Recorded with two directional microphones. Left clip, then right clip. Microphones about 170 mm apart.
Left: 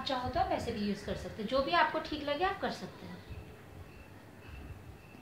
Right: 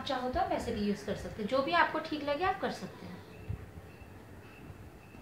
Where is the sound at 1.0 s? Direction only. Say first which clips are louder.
Right 1 dB; centre (ahead or behind).